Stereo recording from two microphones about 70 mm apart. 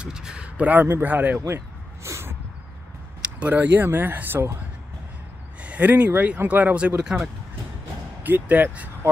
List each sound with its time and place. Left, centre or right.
0.0 s a sound: centre
0.6 s speech: right
2.0 s a sound: right
3.2 s speech: right
5.6 s speech: right
8.2 s speech: right